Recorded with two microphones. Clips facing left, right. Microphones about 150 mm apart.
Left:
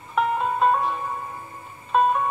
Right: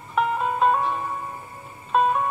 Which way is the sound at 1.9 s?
Centre (ahead or behind).